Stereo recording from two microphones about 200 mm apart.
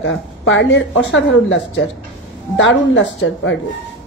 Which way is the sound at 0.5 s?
65° left (ahead or behind).